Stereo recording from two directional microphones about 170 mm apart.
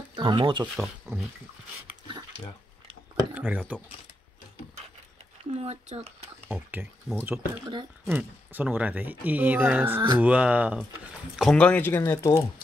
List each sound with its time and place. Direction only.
0.1 s speech: 30° right (ahead or behind)
0.7 s speech: 5° right (ahead or behind)
3.3 s speech: 10° right (ahead or behind)
5.6 s speech: 40° right (ahead or behind)
6.5 s speech: 10° right (ahead or behind); by 12.4 s 20° left (ahead or behind)